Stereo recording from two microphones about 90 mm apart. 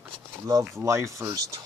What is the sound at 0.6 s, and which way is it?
Speech, 30° right (ahead or behind).